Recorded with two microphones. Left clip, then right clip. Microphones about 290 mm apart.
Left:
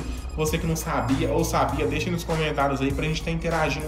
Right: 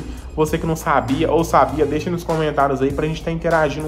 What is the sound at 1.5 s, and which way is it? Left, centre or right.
Speech, centre.